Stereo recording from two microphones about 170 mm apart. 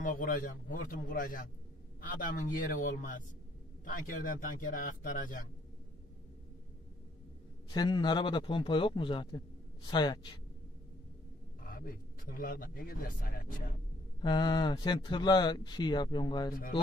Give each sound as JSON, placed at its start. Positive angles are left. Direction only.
{"t": 0.0, "sound": "speech", "side_deg": 55}
{"t": 7.7, "sound": "speech", "side_deg": 25}
{"t": 11.6, "sound": "a man's voice", "side_deg": 60}
{"t": 14.2, "sound": "speech", "side_deg": 25}